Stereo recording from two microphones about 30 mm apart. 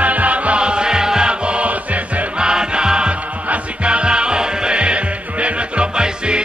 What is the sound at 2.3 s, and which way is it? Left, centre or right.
Music, right.